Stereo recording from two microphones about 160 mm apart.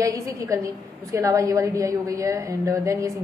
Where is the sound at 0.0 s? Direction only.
20° right (ahead or behind).